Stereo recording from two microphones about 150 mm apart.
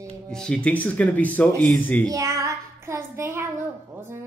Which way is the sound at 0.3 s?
5° left (ahead or behind).